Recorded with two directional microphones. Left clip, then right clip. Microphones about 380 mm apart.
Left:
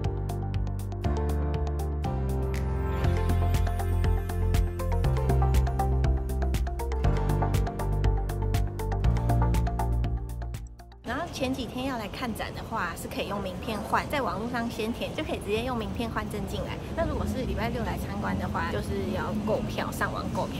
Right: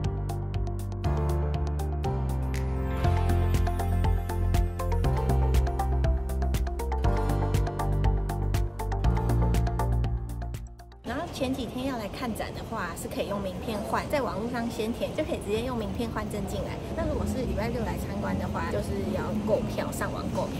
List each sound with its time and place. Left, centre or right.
1.0 s music: centre
3.0 s music: centre
9.0 s music: centre
11.1 s speech: centre